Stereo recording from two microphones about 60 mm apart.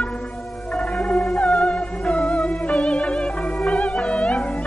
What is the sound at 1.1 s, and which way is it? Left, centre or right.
Music, centre.